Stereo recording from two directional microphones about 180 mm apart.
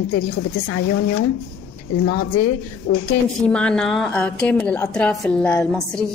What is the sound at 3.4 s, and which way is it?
A woman's voice, 5° left (ahead or behind).